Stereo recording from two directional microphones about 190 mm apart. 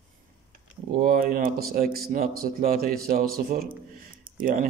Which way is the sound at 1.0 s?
45° right (ahead or behind).